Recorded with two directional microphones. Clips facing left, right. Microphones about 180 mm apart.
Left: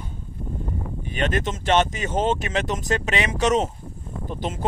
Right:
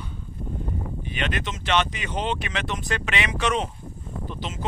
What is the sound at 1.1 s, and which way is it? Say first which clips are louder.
Speech: left 6 dB; 45° left (ahead or behind).